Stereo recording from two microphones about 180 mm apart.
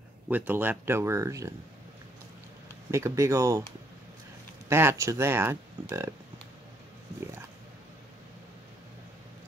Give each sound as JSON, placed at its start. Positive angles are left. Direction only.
{"t": 0.3, "sound": "speech", "side_deg": -10}
{"t": 2.9, "sound": "speech", "side_deg": -15}
{"t": 4.6, "sound": "speech", "side_deg": -15}